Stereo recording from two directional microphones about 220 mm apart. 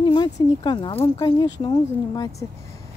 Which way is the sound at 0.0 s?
20° left (ahead or behind).